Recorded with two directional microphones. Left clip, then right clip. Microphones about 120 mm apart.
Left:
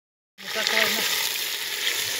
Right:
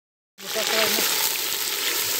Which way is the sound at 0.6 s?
45° right (ahead or behind).